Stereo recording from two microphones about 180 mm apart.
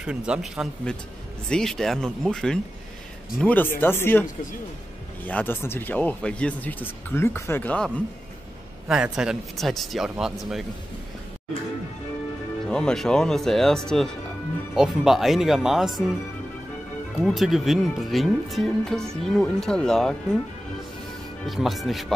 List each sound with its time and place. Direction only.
0.0 s speech: 5° right (ahead or behind)
8.8 s speech: 5° right (ahead or behind)
12.6 s speech: 5° left (ahead or behind)
17.2 s speech: centre (ahead or behind)
21.5 s speech: centre (ahead or behind)